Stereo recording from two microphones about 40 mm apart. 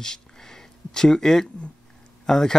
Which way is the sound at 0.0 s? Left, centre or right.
Centre.